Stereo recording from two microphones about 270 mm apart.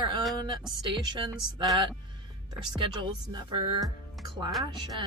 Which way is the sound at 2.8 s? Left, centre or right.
Centre.